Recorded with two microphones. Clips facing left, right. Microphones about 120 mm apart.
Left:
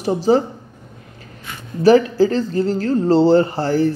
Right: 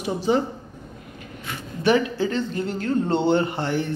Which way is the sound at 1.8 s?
35° left (ahead or behind).